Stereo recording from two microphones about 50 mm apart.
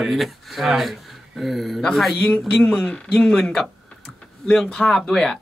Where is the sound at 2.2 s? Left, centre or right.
Left.